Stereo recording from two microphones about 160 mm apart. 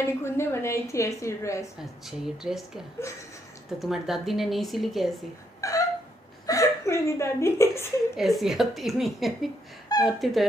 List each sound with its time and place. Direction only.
0.0 s a woman's voice: 15° left (ahead or behind)
1.8 s speech: 5° right (ahead or behind)
3.8 s speech: centre (ahead or behind)
5.6 s a sound: 20° left (ahead or behind)
6.4 s speech: 20° left (ahead or behind)
8.2 s speech: centre (ahead or behind)